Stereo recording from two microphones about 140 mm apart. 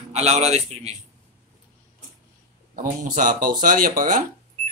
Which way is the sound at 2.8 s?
70° right (ahead or behind).